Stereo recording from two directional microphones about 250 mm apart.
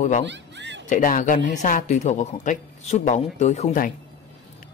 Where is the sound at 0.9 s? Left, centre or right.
Left.